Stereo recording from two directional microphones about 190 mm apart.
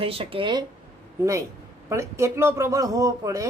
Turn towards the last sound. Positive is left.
turn(degrees=-15)  # may be behind; listen again after turning